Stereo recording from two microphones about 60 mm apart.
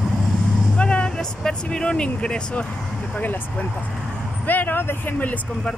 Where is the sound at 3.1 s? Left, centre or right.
Left.